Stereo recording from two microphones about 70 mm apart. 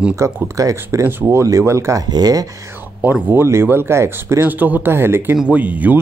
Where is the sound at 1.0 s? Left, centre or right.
Right.